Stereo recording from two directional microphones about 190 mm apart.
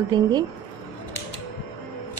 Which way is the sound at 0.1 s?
20° right (ahead or behind).